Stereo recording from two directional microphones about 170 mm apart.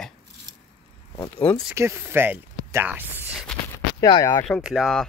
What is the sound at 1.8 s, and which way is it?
Speech, 15° right (ahead or behind).